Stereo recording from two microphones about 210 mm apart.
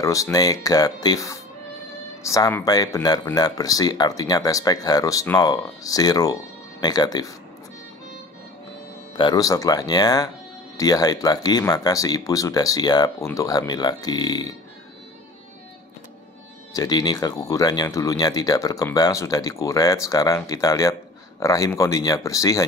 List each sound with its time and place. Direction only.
0.0 s speech: 15° left (ahead or behind)
9.1 s speech: 20° left (ahead or behind)
16.7 s speech: 20° left (ahead or behind)